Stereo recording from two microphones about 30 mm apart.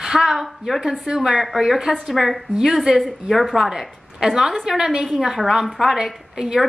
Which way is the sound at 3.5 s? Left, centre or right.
Centre.